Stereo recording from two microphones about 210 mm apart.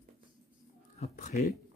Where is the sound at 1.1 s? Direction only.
45° left (ahead or behind).